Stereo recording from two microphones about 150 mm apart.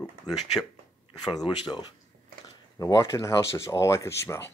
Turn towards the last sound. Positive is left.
turn(degrees=20)  # may be behind; listen again after turning